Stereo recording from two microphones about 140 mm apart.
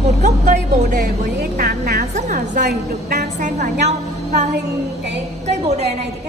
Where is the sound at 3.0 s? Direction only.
60° right (ahead or behind).